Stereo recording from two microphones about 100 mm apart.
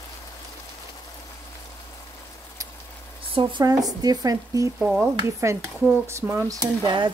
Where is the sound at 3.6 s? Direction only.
40° right (ahead or behind).